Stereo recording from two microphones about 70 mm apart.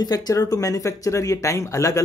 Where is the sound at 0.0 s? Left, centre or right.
Left.